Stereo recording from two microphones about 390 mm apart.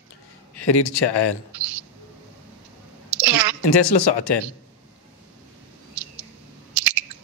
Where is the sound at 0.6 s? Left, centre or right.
Left.